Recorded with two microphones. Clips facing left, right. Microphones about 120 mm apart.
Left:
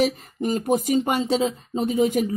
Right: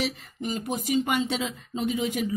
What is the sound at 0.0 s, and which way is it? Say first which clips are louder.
Speech: left 8 dB; 45° left (ahead or behind).